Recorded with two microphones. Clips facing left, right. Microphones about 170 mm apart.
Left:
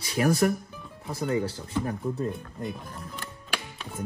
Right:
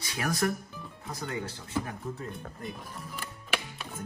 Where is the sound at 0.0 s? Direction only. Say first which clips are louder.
Left 7 dB; 30° left (ahead or behind).